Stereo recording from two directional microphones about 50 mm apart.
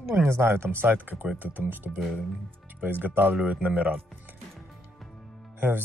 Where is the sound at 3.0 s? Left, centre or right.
Right.